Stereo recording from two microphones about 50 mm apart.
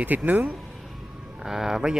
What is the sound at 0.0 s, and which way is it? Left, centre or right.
Speech, right.